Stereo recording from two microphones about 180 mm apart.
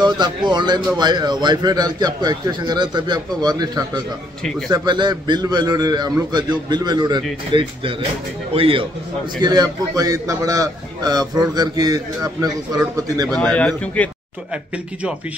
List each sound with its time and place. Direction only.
0.0 s a man's voice: 25° right (ahead or behind)
13.3 s speech: 5° left (ahead or behind)